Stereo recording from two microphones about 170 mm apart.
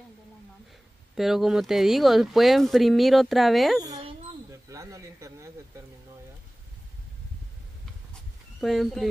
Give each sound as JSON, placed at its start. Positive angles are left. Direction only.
{"t": 1.1, "sound": "speech", "side_deg": 0}
{"t": 4.5, "sound": "a sound", "side_deg": -20}
{"t": 8.1, "sound": "dog", "side_deg": 0}